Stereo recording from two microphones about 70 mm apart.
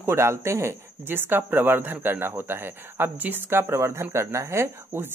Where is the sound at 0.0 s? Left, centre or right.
Right.